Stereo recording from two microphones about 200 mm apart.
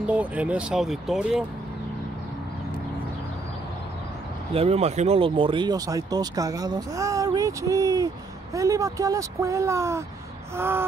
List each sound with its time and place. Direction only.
0.0 s speech: 5° right (ahead or behind)
4.6 s speech: 30° right (ahead or behind); by 10.9 s 10° right (ahead or behind)